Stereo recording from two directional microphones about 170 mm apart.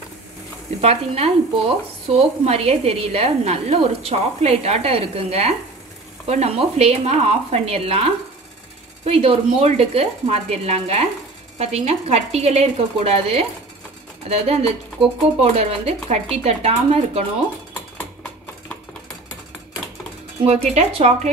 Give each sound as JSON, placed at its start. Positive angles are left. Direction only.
{"t": 0.7, "sound": "a woman's voice", "side_deg": -35}
{"t": 20.4, "sound": "a woman's voice", "side_deg": -40}